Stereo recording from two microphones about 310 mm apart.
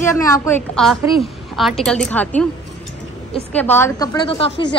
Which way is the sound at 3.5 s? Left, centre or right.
Centre.